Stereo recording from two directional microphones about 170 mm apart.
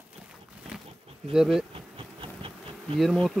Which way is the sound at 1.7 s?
30° right (ahead or behind).